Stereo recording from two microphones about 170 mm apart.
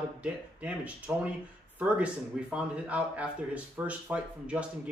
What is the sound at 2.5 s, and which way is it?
Speech, 5° right (ahead or behind).